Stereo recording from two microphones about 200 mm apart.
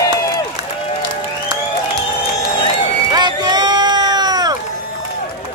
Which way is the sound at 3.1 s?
20° right (ahead or behind).